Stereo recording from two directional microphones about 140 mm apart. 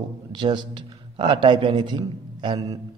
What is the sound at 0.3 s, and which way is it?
A man's voice, 35° right (ahead or behind).